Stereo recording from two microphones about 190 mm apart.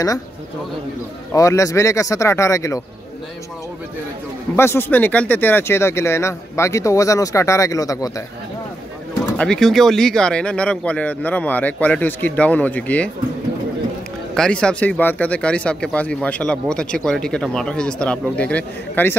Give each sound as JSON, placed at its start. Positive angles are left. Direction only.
{"t": 1.3, "sound": "speech", "side_deg": 15}
{"t": 4.6, "sound": "speech", "side_deg": 15}
{"t": 9.4, "sound": "speech", "side_deg": 5}
{"t": 14.3, "sound": "speech", "side_deg": 5}